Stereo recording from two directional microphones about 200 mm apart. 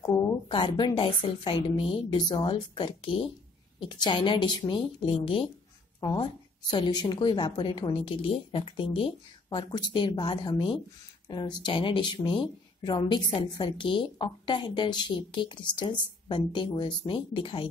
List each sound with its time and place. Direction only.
0.0 s speech: 20° left (ahead or behind)